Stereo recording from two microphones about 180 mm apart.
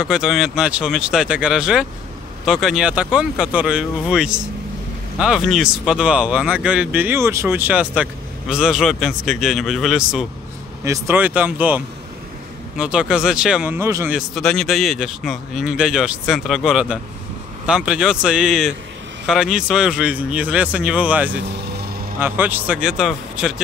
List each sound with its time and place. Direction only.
0.0 s speech: 5° right (ahead or behind)
10.8 s speech: 15° right (ahead or behind)
14.1 s speech: centre (ahead or behind)
21.5 s vehicle: 65° right (ahead or behind)
22.2 s speech: 10° right (ahead or behind)